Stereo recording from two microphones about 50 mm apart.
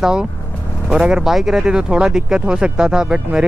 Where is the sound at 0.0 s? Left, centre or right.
Centre.